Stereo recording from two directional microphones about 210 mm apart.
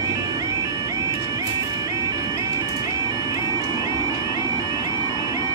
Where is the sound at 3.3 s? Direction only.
15° right (ahead or behind).